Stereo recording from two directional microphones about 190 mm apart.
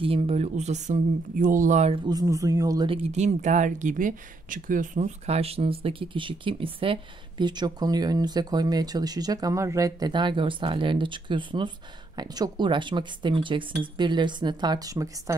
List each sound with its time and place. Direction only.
0.0 s speech: 30° right (ahead or behind)
2.0 s speech: 20° right (ahead or behind)